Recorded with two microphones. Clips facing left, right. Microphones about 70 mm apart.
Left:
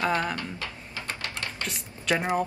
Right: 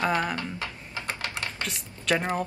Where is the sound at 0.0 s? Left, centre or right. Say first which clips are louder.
Even; right.